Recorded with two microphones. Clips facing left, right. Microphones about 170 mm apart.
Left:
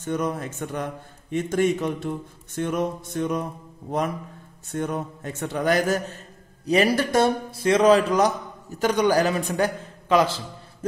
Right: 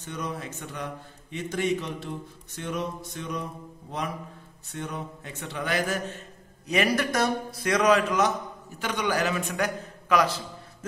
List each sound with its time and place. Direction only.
0.0 s a man's voice: 50° left (ahead or behind)
4.7 s a man's voice: 50° left (ahead or behind); by 10.9 s 30° left (ahead or behind)